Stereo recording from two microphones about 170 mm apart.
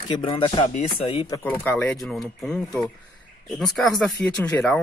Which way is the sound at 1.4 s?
10° left (ahead or behind).